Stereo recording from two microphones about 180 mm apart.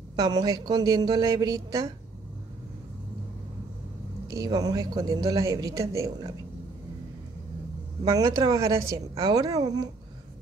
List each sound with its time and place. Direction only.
0.1 s speech: 20° right (ahead or behind)
4.3 s speech: 20° right (ahead or behind)
8.0 s speech: 20° right (ahead or behind)